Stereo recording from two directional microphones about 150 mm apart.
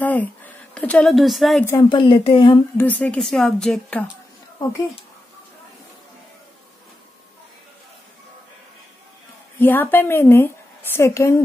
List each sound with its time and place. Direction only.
0.0 s a woman's voice: 10° left (ahead or behind)
1.8 s speech: 30° left (ahead or behind)
2.8 s a woman's voice: 10° left (ahead or behind)
9.6 s a woman's voice: 15° left (ahead or behind)